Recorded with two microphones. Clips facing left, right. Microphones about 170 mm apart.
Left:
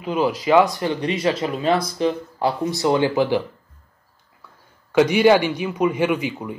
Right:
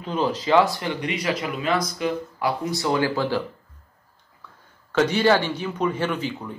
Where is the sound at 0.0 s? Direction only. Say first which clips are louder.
Left 3 dB; 10° left (ahead or behind).